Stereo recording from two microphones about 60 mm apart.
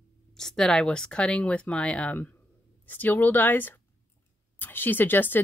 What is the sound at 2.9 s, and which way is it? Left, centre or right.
Speech, left.